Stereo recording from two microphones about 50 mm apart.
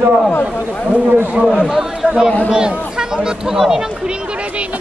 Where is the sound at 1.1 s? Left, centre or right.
Right.